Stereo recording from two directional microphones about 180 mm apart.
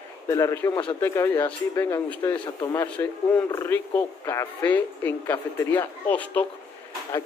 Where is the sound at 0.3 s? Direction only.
15° left (ahead or behind).